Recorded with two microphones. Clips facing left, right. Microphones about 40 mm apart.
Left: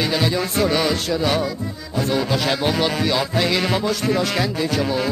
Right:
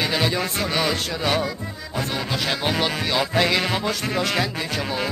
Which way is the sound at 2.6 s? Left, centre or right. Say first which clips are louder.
Left 3 dB; centre.